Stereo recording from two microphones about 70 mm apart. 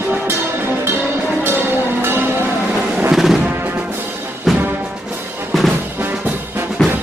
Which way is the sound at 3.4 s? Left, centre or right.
Right.